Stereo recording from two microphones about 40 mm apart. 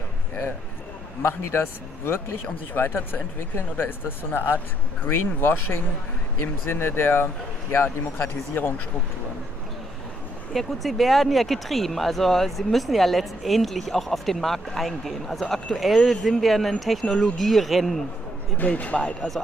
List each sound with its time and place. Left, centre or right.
1.2 s speech: left
2.7 s speech: left
4.3 s speech: left
8.2 s speech: left
10.5 s speech: centre
18.7 s speech: left